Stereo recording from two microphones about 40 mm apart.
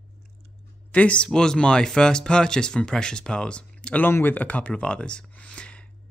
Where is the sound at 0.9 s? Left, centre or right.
Left.